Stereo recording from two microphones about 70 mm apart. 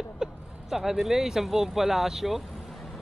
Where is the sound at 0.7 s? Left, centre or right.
Centre.